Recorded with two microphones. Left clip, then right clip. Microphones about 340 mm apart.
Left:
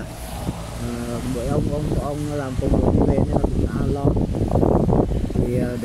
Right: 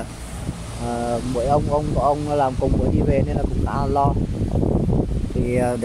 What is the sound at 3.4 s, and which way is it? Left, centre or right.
Speech, left.